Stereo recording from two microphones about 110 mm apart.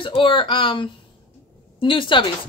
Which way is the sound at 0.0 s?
50° left (ahead or behind).